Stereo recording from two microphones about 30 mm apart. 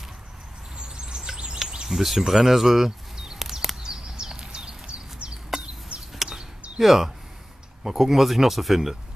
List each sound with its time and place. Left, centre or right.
0.7 s chirp: right
1.9 s speech: centre
3.3 s a sound: centre; by 6.1 s right
6.8 s speech: centre